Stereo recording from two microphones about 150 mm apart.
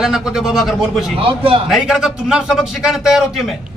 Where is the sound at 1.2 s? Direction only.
40° right (ahead or behind).